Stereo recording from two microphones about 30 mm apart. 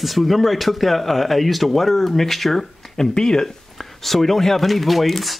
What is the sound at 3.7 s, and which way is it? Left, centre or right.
Speech, centre.